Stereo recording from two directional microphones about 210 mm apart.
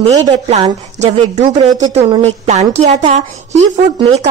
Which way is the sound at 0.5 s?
35° right (ahead or behind).